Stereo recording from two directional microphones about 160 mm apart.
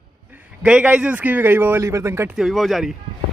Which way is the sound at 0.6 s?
5° right (ahead or behind).